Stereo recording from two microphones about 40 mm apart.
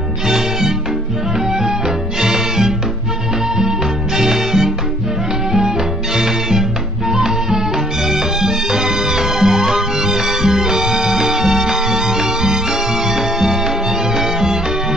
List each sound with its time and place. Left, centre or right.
0.3 s music: centre
2.1 s music: centre
4.2 s music: centre
6.1 s music: centre